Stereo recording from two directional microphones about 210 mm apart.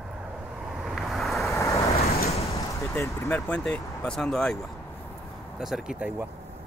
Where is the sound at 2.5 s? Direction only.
15° left (ahead or behind); by 6.2 s 5° right (ahead or behind).